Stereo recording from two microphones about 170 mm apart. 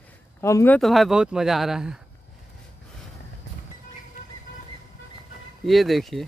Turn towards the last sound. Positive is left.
turn(degrees=0)  # may be behind; listen again after turning